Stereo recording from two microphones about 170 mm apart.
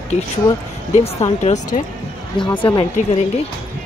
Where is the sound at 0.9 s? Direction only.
40° left (ahead or behind).